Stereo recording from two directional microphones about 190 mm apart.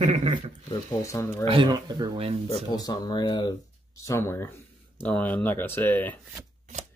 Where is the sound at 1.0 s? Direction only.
15° left (ahead or behind).